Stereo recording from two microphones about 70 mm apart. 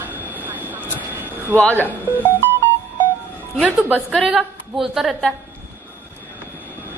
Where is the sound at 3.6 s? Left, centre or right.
Centre.